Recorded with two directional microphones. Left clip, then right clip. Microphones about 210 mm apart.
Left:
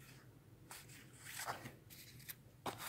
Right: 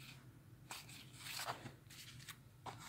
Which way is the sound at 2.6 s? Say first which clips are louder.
Left 7 dB; 50° left (ahead or behind).